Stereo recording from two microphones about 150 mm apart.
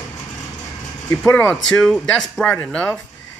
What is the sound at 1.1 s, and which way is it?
Speech, 15° left (ahead or behind).